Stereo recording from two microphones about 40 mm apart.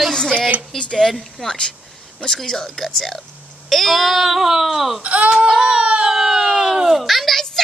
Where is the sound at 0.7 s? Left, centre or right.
Left; by 5.0 s centre.